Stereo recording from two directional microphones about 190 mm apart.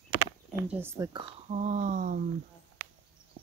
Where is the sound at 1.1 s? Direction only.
40° right (ahead or behind).